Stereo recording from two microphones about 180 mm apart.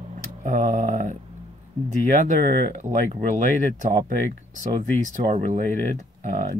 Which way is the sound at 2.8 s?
40° right (ahead or behind).